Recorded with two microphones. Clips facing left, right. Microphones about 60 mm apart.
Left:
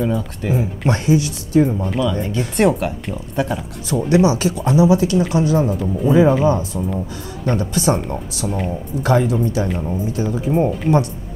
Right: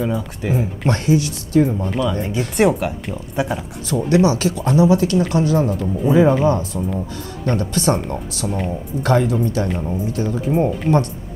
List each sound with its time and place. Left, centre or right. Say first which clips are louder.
0.0 s speech: left 1 dB; centre
0.8 s speech: left 1 dB; centre
1.6 s speech: left 1 dB; centre
3.9 s speech: left 1 dB; centre